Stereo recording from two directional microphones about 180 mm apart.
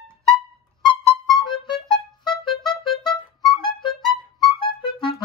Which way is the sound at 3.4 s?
25° left (ahead or behind).